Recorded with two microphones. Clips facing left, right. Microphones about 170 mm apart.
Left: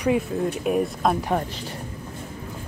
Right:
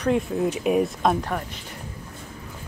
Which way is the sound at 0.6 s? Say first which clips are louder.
Right 1 dB; centre (ahead or behind).